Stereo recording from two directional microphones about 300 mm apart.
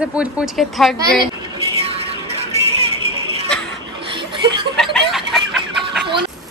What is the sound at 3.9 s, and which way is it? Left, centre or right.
Chuckle, centre.